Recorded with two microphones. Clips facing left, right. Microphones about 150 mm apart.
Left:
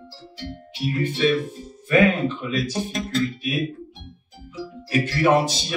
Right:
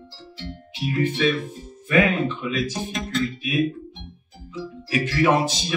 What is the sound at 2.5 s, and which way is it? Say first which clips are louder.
Speech: left 1 dB; 35° left (ahead or behind).